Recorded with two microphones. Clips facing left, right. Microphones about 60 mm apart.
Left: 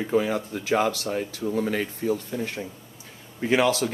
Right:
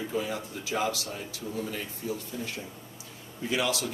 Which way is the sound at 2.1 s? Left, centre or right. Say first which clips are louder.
Left 6 dB; left.